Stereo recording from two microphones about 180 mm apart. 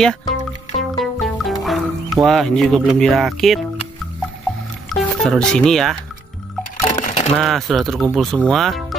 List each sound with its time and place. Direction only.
0.0 s speech: centre (ahead or behind)
0.7 s music: centre (ahead or behind)
4.8 s speech: centre (ahead or behind)
6.8 s sewing machine: 40° left (ahead or behind)
7.3 s speech: centre (ahead or behind)